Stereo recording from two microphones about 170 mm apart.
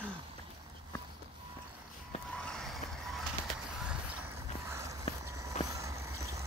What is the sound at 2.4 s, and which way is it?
Vehicle, 5° left (ahead or behind).